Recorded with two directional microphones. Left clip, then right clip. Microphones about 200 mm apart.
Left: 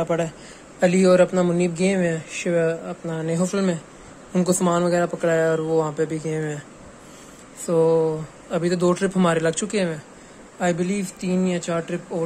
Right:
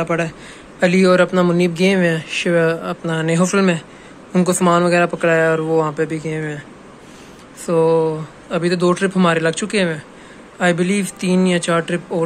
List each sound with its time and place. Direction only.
0.0 s a man's voice: 15° left (ahead or behind)
7.6 s a man's voice: 15° left (ahead or behind)